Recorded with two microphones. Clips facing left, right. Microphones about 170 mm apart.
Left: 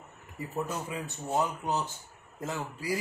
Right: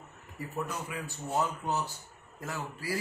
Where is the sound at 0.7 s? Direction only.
25° left (ahead or behind).